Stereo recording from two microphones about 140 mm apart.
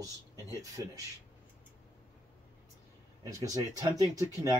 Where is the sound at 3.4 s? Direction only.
25° right (ahead or behind).